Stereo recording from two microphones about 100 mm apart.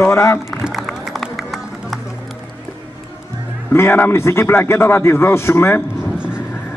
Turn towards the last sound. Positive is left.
turn(degrees=25)  # may be behind; listen again after turning